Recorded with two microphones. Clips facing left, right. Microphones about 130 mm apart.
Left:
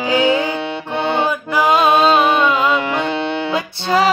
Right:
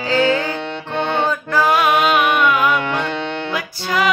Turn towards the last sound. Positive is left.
turn(degrees=30)  # may be behind; listen again after turning